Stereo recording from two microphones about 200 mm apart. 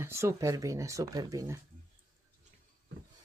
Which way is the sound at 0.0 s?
15° right (ahead or behind).